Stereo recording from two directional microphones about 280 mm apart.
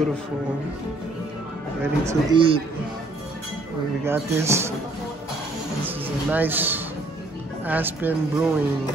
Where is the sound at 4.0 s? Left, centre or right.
Centre.